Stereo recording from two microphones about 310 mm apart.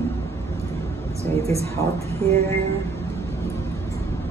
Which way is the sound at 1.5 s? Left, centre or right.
Centre.